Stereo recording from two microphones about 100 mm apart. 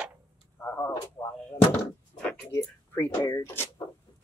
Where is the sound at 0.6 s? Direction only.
20° left (ahead or behind).